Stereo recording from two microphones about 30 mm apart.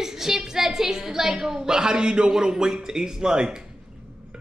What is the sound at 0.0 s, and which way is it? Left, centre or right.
A woman's voice, centre.